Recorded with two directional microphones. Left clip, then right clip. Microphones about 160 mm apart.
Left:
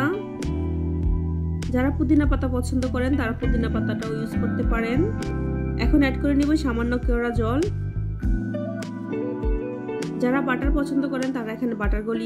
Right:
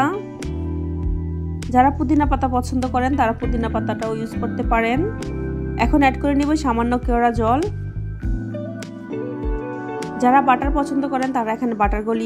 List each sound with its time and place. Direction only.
1.7 s speech: 15° right (ahead or behind)
10.2 s speech: 15° right (ahead or behind)